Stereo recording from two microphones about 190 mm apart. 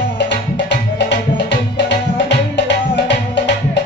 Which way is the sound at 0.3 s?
65° left (ahead or behind).